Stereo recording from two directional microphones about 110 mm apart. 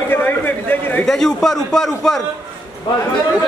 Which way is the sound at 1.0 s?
5° left (ahead or behind).